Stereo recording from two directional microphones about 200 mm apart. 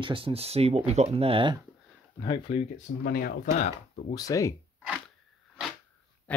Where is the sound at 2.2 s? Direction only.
20° left (ahead or behind).